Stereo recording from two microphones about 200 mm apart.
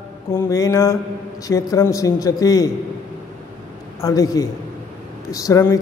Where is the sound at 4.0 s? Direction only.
15° left (ahead or behind).